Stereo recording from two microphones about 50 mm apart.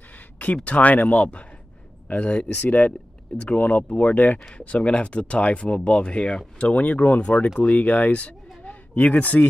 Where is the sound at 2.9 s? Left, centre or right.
Centre.